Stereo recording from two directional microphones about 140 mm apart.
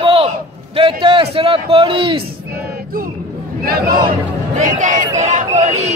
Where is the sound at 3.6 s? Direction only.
90° right.